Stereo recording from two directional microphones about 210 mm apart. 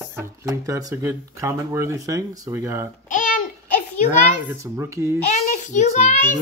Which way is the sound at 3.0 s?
40° left (ahead or behind).